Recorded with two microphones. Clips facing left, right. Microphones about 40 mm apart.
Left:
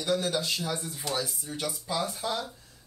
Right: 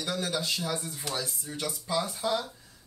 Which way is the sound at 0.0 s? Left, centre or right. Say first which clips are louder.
Left 3 dB; centre.